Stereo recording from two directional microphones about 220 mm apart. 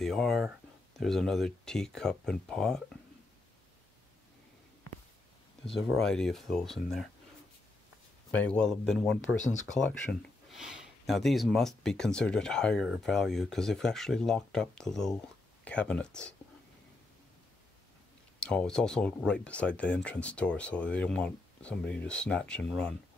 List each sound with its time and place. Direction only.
0.0 s speech: centre (ahead or behind)
5.9 s speech: 5° left (ahead or behind)
8.3 s speech: 5° left (ahead or behind)
9.4 s speech: 35° left (ahead or behind)
9.8 s speech: 5° left (ahead or behind)
18.4 s speech: 5° left (ahead or behind)